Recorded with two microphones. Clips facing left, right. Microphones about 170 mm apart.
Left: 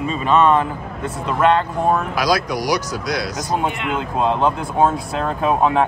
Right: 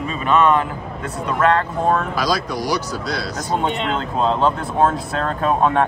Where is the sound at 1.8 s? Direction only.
10° left (ahead or behind).